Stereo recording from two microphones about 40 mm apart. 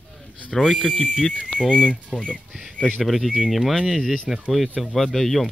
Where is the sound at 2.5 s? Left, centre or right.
Centre.